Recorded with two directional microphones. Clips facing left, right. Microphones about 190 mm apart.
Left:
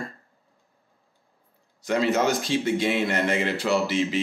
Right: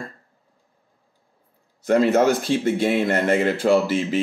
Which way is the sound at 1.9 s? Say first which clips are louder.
Right 6 dB; 50° right (ahead or behind).